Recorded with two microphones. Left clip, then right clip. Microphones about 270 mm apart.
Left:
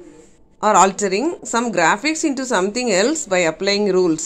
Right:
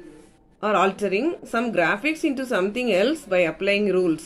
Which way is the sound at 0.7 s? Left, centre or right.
Centre.